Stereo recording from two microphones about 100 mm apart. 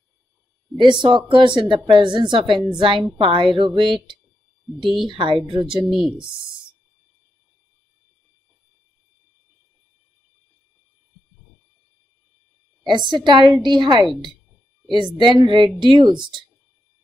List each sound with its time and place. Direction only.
0.7 s a woman's voice: 50° right (ahead or behind)
5.9 s speech: centre (ahead or behind)
12.8 s a woman's voice: 50° right (ahead or behind)